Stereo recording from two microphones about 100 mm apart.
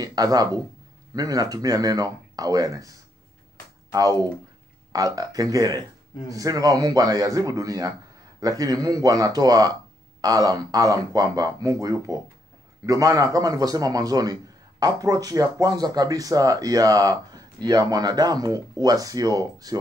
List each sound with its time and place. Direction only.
0.0 s a man's voice: 40° right (ahead or behind)